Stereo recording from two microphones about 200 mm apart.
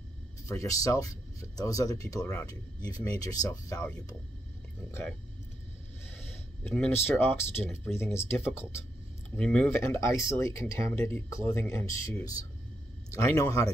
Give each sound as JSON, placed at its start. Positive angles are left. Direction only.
{"t": 0.5, "sound": "speech", "side_deg": 15}
{"t": 6.7, "sound": "speech", "side_deg": 10}